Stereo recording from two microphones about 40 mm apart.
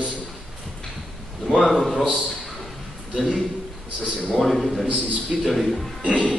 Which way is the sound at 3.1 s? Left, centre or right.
Centre.